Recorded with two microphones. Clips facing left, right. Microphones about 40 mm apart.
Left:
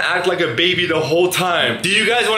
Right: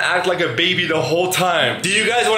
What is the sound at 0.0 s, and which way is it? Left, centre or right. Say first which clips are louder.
Speech: even; centre.